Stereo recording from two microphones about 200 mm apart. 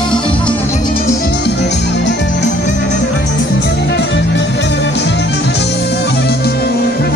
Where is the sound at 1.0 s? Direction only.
50° left (ahead or behind).